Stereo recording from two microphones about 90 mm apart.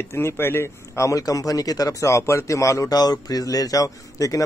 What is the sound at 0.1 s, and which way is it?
A man's voice, 30° left (ahead or behind).